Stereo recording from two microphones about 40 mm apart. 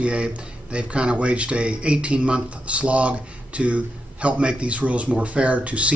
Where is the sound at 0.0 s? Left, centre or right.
Right.